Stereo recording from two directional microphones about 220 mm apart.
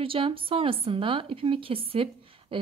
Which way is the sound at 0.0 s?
25° right (ahead or behind).